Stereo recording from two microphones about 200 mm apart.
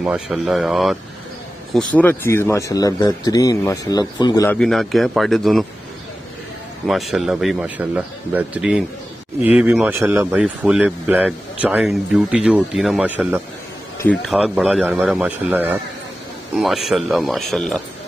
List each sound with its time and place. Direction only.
0.0 s speech: 5° right (ahead or behind); by 4.5 s 20° left (ahead or behind)
4.5 s speech: centre (ahead or behind)
6.9 s speech: centre (ahead or behind)
13.9 s speech: 5° left (ahead or behind)